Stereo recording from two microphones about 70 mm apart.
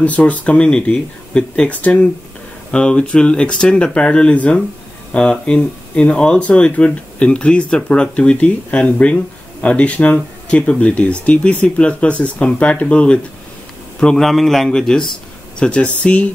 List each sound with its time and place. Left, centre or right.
0.0 s a man's voice: left